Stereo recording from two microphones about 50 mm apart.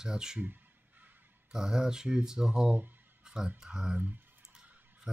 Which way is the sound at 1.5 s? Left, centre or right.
Centre.